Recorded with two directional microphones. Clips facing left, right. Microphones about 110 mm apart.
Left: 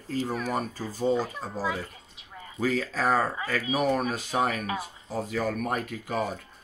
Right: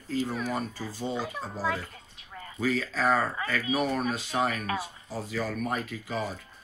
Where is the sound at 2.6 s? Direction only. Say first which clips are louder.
Left 1 dB; 45° left (ahead or behind).